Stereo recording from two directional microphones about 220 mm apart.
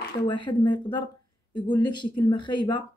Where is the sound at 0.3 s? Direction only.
20° left (ahead or behind).